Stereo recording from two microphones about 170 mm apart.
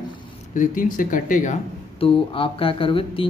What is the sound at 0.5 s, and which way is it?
Speech, 50° left (ahead or behind).